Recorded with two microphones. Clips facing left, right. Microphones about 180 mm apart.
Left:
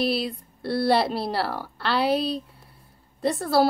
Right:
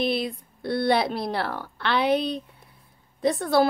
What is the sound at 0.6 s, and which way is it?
A woman's voice, 5° left (ahead or behind).